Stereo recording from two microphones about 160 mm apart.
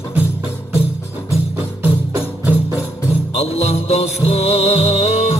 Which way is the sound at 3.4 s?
40° left (ahead or behind).